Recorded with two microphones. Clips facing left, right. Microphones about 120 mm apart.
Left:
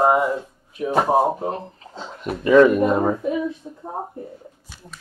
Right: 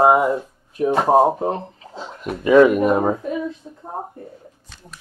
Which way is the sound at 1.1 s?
35° right (ahead or behind).